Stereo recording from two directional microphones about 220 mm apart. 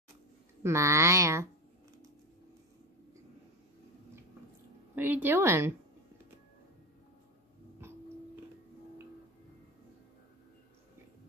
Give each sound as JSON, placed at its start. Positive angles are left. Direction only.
{"t": 0.7, "sound": "speech", "side_deg": -15}
{"t": 4.9, "sound": "speech", "side_deg": -10}